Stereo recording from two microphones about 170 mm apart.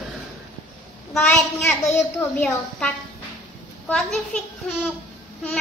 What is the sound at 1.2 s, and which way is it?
Speech, 15° left (ahead or behind).